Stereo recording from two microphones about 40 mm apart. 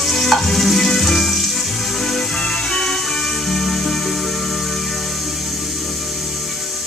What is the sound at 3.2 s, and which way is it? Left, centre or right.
Music, centre.